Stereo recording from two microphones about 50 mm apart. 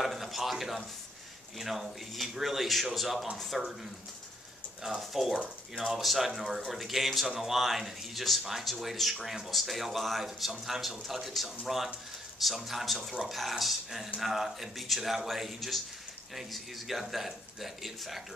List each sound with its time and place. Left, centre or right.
0.0 s a sound: centre
1.6 s speech: centre
4.9 s speech: centre
5.4 s speech: centre
5.9 s speech: centre